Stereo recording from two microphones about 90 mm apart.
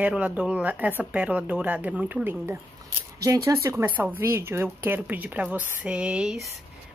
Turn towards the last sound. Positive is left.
turn(degrees=-10)  # may be behind; listen again after turning